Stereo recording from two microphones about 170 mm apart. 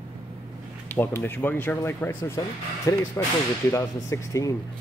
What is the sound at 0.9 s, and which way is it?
Speech, 15° left (ahead or behind).